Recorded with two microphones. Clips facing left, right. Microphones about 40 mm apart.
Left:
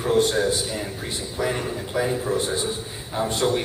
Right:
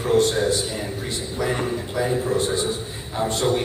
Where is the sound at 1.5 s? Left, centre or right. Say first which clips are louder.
Right 3 dB; centre.